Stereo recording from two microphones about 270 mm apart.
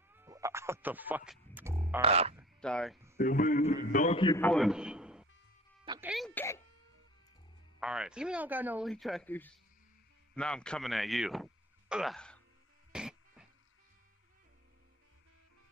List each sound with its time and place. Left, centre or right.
0.1 s a sound: centre
2.0 s frog: right
2.3 s speech: centre
3.2 s a man's voice: left
4.4 s a man's voice: centre
5.9 s music: centre
7.8 s a man's voice: centre
12.9 s music: centre